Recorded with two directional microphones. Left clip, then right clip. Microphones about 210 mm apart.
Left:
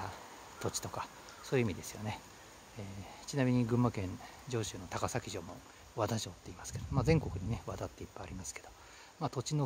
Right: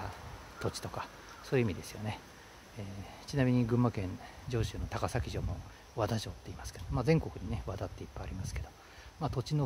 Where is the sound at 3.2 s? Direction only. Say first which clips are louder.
Right 2 dB; 10° left (ahead or behind).